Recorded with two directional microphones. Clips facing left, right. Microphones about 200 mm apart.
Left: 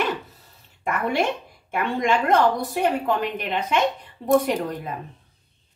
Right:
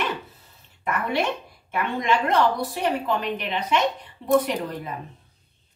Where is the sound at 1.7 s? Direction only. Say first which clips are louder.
Left 2 dB; 50° left (ahead or behind).